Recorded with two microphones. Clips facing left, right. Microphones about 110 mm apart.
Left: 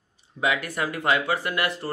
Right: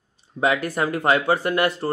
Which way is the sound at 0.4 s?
40° right (ahead or behind).